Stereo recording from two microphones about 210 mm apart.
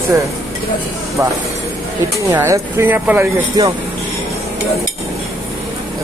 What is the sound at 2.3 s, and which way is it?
Speech, 15° right (ahead or behind).